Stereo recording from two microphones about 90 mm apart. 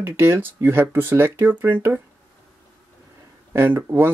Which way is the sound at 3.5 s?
25° right (ahead or behind).